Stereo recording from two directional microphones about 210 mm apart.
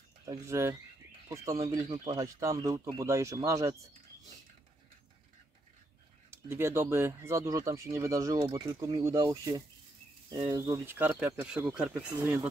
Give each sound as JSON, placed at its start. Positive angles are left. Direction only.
{"t": 0.2, "sound": "speech", "side_deg": -15}
{"t": 6.3, "sound": "speech", "side_deg": -10}